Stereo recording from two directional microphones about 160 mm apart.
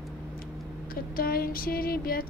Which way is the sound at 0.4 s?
65° left (ahead or behind).